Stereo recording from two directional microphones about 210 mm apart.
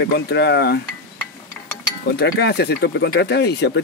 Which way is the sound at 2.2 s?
50° left (ahead or behind).